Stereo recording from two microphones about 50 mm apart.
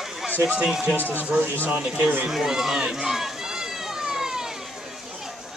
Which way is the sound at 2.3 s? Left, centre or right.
Centre.